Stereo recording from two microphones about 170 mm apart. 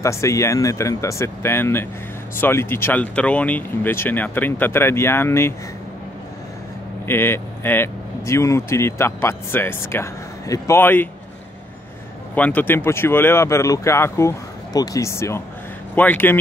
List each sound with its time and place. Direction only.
0.0 s speech: 15° left (ahead or behind)
7.1 s speech: 15° left (ahead or behind)
12.4 s speech: 10° left (ahead or behind)